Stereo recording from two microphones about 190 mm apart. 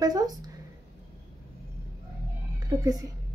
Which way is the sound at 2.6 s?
20° right (ahead or behind).